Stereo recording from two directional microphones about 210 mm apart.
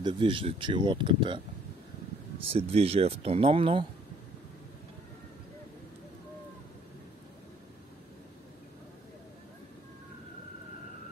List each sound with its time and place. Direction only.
0.0 s speech: 25° right (ahead or behind)
2.5 s speech: 30° right (ahead or behind)